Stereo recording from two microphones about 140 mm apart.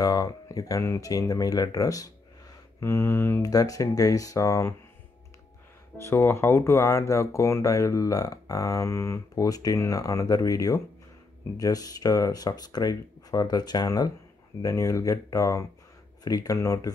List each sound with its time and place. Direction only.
0.0 s speech: 25° left (ahead or behind)
5.9 s speech: 20° left (ahead or behind)